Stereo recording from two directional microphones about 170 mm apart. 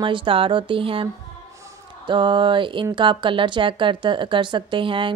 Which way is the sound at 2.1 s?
30° right (ahead or behind).